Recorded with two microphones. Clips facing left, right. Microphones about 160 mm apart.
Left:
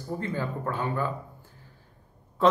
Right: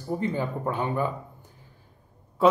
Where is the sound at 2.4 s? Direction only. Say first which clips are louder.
Right 2 dB; 10° right (ahead or behind).